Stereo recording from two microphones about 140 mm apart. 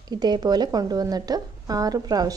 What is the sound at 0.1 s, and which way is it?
A woman's voice, 30° right (ahead or behind).